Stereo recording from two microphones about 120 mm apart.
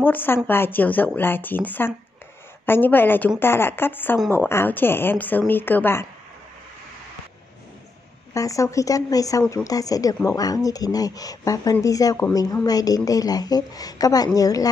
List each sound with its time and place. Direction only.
0.0 s speech: 15° left (ahead or behind)
8.3 s a woman's voice: 25° left (ahead or behind)